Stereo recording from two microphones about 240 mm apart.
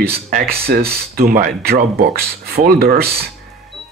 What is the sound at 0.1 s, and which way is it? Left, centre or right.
Speech, right.